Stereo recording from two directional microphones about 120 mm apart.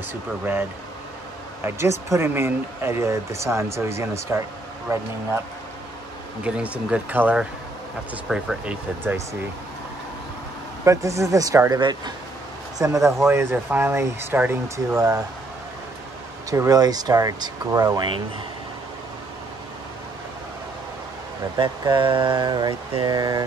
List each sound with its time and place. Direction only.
1.6 s speech: 25° right (ahead or behind)
6.4 s speech: 10° right (ahead or behind)
9.0 s speech: 20° right (ahead or behind)
10.9 s speech: 25° right (ahead or behind)
15.0 s speech: 30° right (ahead or behind)
16.4 s speech: 30° right (ahead or behind)
21.5 s speech: 40° right (ahead or behind)